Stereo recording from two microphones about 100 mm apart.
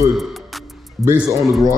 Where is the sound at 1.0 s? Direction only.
30° right (ahead or behind).